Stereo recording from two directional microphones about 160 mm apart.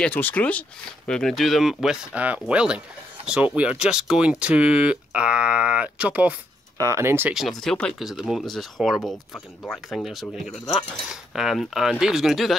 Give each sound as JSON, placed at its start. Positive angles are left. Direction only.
{"t": 0.0, "sound": "speech", "side_deg": 10}
{"t": 7.3, "sound": "speech", "side_deg": 0}